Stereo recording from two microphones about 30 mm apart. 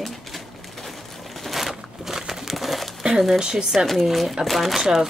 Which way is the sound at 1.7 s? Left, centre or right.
Centre.